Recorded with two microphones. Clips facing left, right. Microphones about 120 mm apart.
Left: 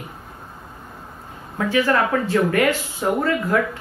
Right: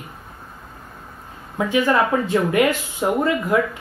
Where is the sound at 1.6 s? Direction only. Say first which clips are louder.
Right 1 dB; 15° right (ahead or behind).